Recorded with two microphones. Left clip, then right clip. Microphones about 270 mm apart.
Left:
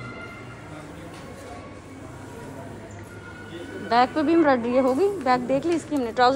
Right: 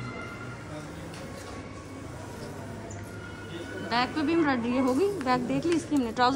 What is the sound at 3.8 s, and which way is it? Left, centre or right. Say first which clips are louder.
Speech: left 8 dB; centre.